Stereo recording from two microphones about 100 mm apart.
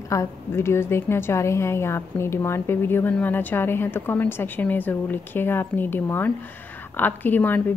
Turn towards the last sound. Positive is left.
turn(degrees=20)  # may be behind; listen again after turning